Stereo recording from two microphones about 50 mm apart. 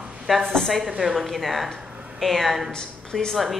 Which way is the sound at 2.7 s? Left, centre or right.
Centre.